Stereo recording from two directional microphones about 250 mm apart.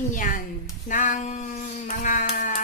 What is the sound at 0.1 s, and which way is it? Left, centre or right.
Speech, left.